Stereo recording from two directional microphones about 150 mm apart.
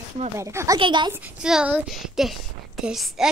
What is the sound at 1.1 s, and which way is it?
A woman's voice, 10° right (ahead or behind).